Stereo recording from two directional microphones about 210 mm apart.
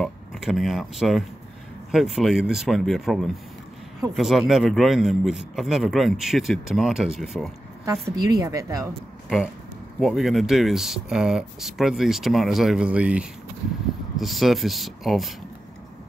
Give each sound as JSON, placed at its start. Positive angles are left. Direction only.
{"t": 0.0, "sound": "speech", "side_deg": 0}
{"t": 7.8, "sound": "a woman's voice", "side_deg": -15}
{"t": 9.9, "sound": "speech", "side_deg": 0}